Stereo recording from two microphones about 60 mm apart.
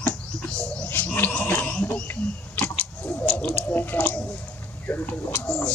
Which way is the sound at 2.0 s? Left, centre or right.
Left.